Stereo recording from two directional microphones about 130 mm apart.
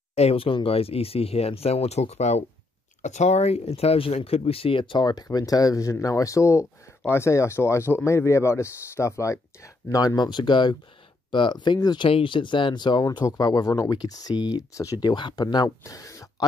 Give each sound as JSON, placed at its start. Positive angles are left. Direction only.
{"t": 0.1, "sound": "speech", "side_deg": 50}